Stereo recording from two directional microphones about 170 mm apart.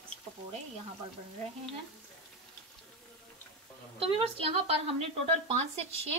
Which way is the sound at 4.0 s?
35° right (ahead or behind).